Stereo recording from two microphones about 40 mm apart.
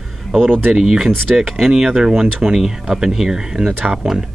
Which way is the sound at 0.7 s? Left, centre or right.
Centre.